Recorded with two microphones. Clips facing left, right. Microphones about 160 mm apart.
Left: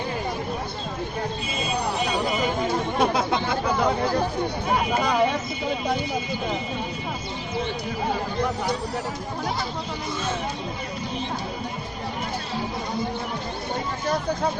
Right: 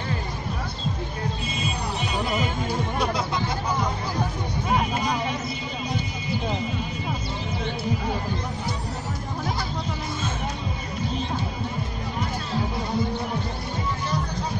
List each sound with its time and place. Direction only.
3.0 s chatter: 60° left (ahead or behind)